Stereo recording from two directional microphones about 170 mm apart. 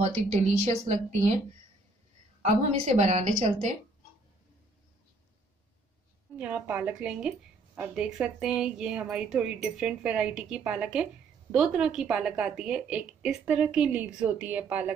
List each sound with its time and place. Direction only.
0.0 s speech: 40° right (ahead or behind)
2.4 s speech: 40° right (ahead or behind)
6.3 s a woman's voice: 10° right (ahead or behind)